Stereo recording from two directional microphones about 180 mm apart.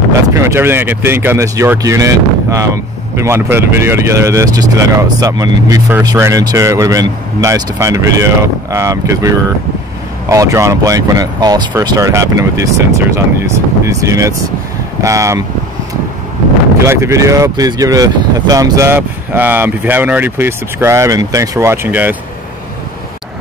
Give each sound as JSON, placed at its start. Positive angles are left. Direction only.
{"t": 0.4, "sound": "speech", "side_deg": -15}
{"t": 10.3, "sound": "speech", "side_deg": -15}
{"t": 16.8, "sound": "speech", "side_deg": -15}